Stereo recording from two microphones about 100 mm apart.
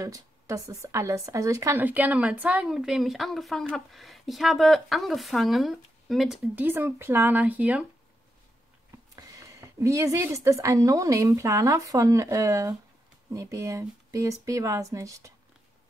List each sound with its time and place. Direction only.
0.0 s a woman's voice: 30° right (ahead or behind)
1.8 s a woman's voice: 15° right (ahead or behind)
6.5 s speech: 20° right (ahead or behind)
9.1 s a woman's voice: 35° right (ahead or behind)